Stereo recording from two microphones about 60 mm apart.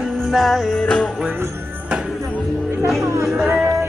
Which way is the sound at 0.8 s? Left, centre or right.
Left.